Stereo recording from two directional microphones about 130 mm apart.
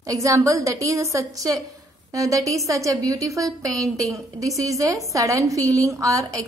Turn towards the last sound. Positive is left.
turn(degrees=-25)  # may be behind; listen again after turning